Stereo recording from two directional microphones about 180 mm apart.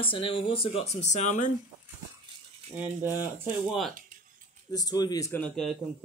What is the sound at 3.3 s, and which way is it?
Speech, 10° right (ahead or behind).